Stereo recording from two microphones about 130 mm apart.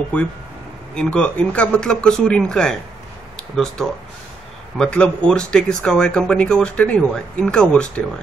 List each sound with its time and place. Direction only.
0.9 s speech: 10° left (ahead or behind)